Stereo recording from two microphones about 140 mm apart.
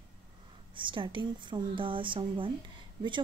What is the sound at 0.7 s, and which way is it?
Speech, 35° right (ahead or behind).